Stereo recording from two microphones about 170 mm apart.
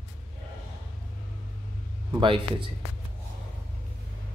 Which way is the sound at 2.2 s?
30° right (ahead or behind).